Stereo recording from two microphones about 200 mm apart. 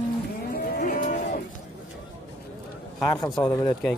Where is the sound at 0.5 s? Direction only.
45° left (ahead or behind).